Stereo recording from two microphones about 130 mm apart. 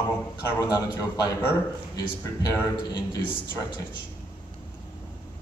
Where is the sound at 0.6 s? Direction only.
30° left (ahead or behind).